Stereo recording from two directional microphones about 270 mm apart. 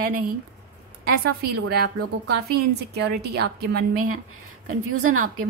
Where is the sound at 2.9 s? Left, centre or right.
Right.